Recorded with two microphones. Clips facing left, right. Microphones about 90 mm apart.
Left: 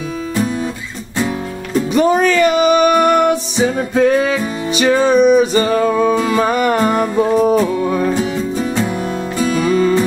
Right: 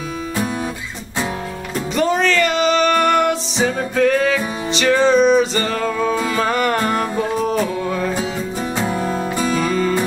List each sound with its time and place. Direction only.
2.0 s music: 15° left (ahead or behind)
9.6 s music: 15° left (ahead or behind)